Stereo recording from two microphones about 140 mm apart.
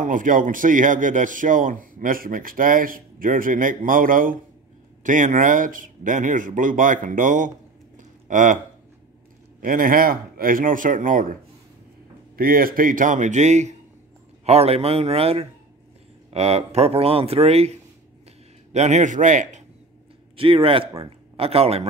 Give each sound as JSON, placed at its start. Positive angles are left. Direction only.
{"t": 0.0, "sound": "speech", "side_deg": -70}
{"t": 5.0, "sound": "speech", "side_deg": -70}
{"t": 8.0, "sound": "a sound", "side_deg": -65}
{"t": 9.6, "sound": "speech", "side_deg": -80}
{"t": 12.4, "sound": "speech", "side_deg": -90}
{"t": 20.3, "sound": "speech", "side_deg": -40}